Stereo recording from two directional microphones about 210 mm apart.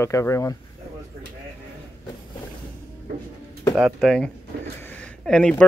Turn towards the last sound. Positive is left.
turn(degrees=5)  # may be behind; listen again after turning